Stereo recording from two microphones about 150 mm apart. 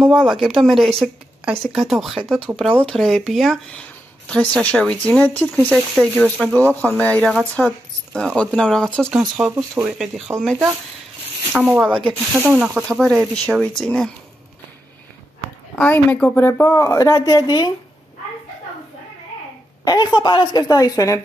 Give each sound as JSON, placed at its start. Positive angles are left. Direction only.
{"t": 0.0, "sound": "speech", "side_deg": 0}
{"t": 9.4, "sound": "speech", "side_deg": -5}
{"t": 11.5, "sound": "speech", "side_deg": -5}
{"t": 15.8, "sound": "speech", "side_deg": 10}
{"t": 19.8, "sound": "speech", "side_deg": 25}